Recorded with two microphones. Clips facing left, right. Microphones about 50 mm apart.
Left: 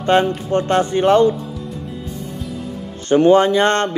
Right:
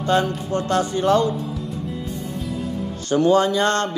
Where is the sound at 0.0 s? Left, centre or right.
Left.